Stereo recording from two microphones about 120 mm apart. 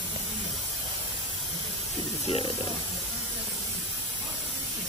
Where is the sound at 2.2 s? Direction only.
55° left (ahead or behind).